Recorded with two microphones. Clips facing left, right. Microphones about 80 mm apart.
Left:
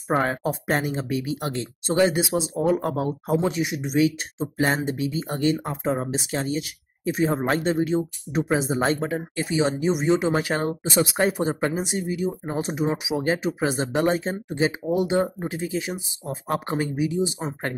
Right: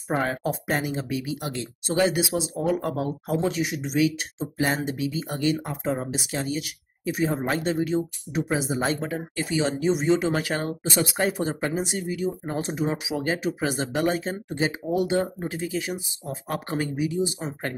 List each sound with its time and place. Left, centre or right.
0.1 s speech: left
13.2 s speech: left